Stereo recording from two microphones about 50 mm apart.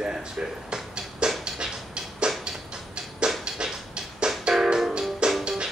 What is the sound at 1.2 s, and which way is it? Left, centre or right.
Music, centre.